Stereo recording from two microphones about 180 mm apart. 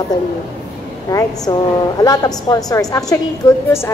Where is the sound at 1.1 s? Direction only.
20° left (ahead or behind).